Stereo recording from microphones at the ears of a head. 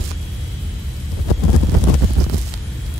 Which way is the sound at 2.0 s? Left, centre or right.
Right.